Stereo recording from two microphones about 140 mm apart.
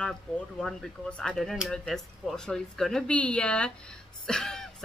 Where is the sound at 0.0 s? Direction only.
5° left (ahead or behind).